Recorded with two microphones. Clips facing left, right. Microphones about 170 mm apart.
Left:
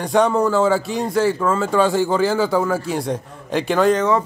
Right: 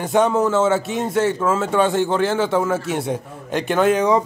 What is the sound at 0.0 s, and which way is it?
A man's voice, centre (ahead or behind).